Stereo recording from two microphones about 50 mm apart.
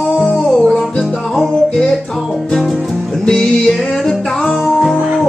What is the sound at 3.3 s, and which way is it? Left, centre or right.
Music, centre.